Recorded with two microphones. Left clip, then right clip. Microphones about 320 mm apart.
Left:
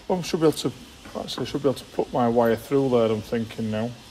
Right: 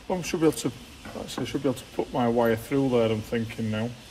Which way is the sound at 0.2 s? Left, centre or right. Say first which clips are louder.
Left 1 dB; left.